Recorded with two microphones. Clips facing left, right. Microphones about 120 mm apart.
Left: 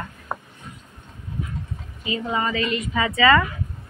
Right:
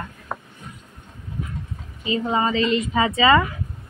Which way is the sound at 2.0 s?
30° right (ahead or behind).